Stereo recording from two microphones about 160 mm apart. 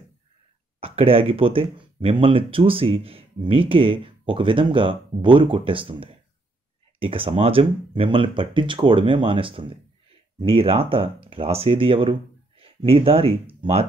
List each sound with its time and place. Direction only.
0.7 s speech: 35° right (ahead or behind)